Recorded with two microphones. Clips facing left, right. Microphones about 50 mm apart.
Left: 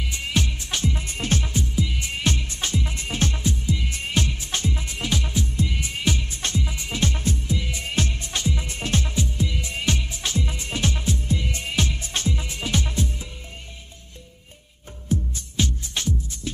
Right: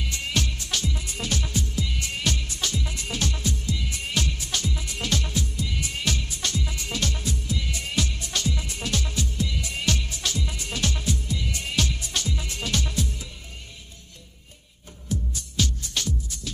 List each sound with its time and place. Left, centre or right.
0.0 s music: centre
4.9 s music: centre
6.6 s music: left
15.0 s music: left